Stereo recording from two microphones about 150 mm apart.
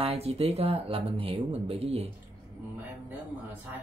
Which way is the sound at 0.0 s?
45° right (ahead or behind).